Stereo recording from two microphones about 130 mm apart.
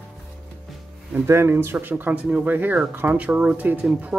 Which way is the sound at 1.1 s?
20° right (ahead or behind).